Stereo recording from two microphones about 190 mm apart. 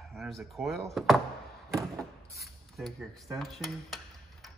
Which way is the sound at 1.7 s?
15° right (ahead or behind).